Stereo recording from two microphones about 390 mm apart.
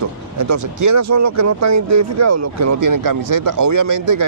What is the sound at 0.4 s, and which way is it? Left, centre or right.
Speech, right.